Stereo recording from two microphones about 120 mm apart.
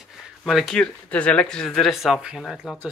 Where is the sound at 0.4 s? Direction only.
Centre (ahead or behind).